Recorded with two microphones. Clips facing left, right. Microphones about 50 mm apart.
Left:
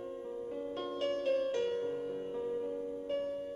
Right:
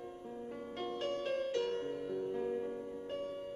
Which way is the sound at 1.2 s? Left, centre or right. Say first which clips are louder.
Left 7 dB; right.